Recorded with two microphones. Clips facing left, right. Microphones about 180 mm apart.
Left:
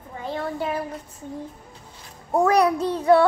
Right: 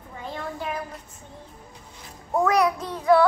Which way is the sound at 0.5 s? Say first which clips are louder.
Left 4 dB; 30° left (ahead or behind).